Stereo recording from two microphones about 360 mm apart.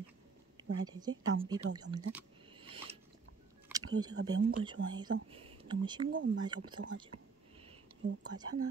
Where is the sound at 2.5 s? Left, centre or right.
Centre.